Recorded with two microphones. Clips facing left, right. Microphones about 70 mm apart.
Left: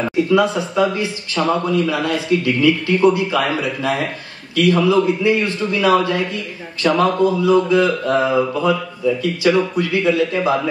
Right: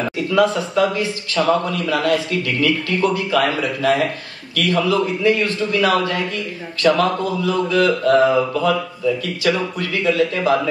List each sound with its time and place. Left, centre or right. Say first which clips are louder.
0.3 s speech: right 2 dB; left